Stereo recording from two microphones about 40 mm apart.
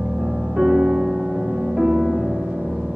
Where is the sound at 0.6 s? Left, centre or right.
Centre.